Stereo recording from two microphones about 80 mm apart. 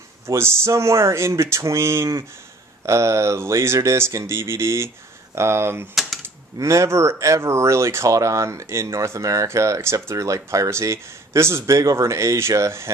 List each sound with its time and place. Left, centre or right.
0.3 s speech: right